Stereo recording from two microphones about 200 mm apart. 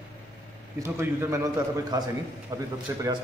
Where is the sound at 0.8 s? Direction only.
10° right (ahead or behind).